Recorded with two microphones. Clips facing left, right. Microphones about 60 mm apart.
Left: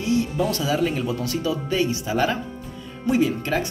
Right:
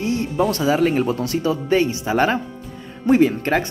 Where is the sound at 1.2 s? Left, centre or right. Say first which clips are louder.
Right 5 dB; right.